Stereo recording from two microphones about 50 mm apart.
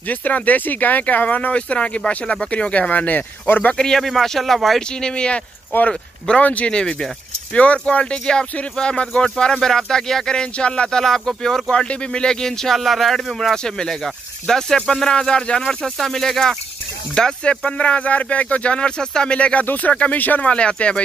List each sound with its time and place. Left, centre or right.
0.1 s speech: left
3.7 s speech: centre
5.0 s speech: centre
19.6 s speech: left